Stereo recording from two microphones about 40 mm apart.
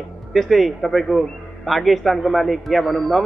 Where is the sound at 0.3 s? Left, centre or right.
Centre.